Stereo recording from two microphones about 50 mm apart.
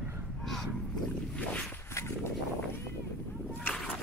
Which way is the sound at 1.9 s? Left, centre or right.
Left.